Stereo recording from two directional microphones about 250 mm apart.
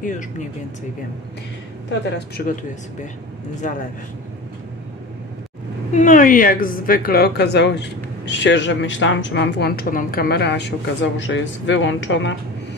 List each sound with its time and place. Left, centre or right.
1.9 s a woman's voice: left
3.6 s speech: left
5.9 s a woman's voice: left